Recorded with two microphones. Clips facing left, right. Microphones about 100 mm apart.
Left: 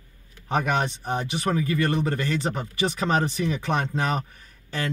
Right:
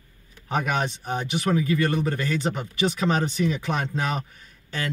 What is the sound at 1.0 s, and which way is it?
Speech, 35° left (ahead or behind).